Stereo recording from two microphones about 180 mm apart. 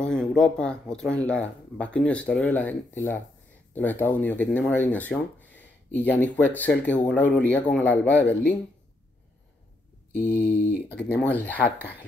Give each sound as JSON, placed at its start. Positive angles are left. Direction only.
{"t": 0.0, "sound": "speech", "side_deg": 5}
{"t": 10.1, "sound": "speech", "side_deg": 10}